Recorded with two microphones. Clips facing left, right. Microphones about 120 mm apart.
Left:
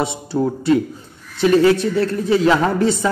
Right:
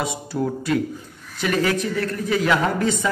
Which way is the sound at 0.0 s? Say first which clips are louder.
Left 5 dB; 30° left (ahead or behind).